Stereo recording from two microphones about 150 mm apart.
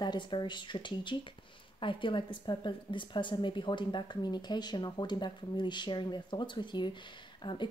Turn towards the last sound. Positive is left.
turn(degrees=30)  # may be behind; listen again after turning